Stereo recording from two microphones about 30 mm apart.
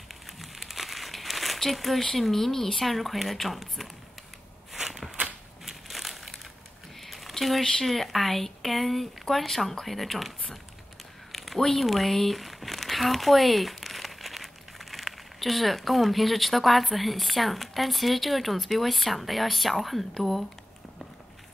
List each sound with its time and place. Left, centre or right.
0.1 s crumpling: centre
2.3 s speech: centre
4.7 s a sound: centre
5.7 s crushing: centre
7.0 s a sound: centre
7.3 s speech: centre